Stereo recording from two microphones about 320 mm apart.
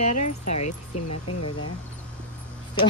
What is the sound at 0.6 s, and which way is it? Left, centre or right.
Speech, left.